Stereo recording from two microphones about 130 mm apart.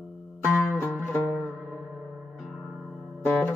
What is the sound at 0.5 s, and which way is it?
Music, 15° left (ahead or behind).